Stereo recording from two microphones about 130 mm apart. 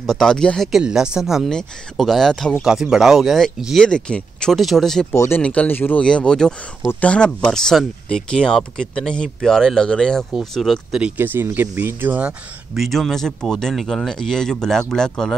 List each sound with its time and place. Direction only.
0.0 s speech: 5° left (ahead or behind)
5.1 s speech: 20° left (ahead or behind)
5.4 s speech: 10° left (ahead or behind)